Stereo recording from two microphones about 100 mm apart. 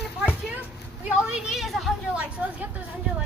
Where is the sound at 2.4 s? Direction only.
15° right (ahead or behind).